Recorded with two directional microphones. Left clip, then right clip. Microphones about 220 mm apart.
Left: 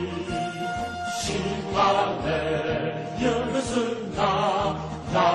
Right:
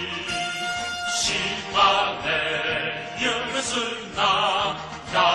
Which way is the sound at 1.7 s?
10° right (ahead or behind).